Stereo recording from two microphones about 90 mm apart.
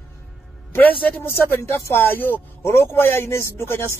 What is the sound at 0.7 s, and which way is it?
A man's voice, 20° left (ahead or behind).